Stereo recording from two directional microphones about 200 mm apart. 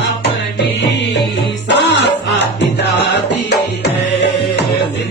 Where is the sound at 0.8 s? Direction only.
60° left (ahead or behind).